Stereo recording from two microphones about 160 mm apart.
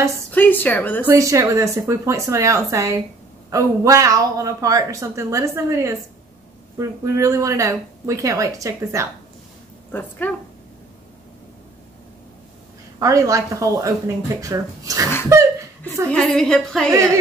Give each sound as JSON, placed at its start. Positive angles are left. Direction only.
{"t": 0.3, "sound": "a woman's voice", "side_deg": 10}
{"t": 1.0, "sound": "a woman's voice", "side_deg": -20}
{"t": 9.8, "sound": "a woman's voice", "side_deg": 10}
{"t": 13.0, "sound": "a woman's voice", "side_deg": -20}
{"t": 16.1, "sound": "a woman's voice", "side_deg": 5}
{"t": 16.9, "sound": "music", "side_deg": -20}